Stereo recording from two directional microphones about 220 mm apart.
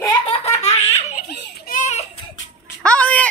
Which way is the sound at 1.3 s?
50° left (ahead or behind).